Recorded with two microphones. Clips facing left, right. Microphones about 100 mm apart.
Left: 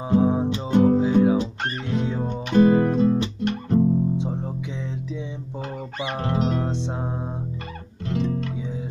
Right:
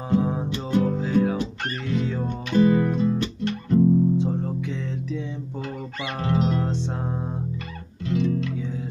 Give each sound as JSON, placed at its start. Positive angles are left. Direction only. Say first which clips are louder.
{"t": 0.1, "sound": "music", "louder": "left 4 dB", "side_deg": 15}
{"t": 2.5, "sound": "music", "louder": "left 2 dB", "side_deg": 35}
{"t": 3.2, "sound": "guitar", "louder": "left 2 dB", "side_deg": 20}
{"t": 5.9, "sound": "music", "louder": "even", "side_deg": 25}
{"t": 8.1, "sound": "music", "louder": "right 2 dB", "side_deg": 35}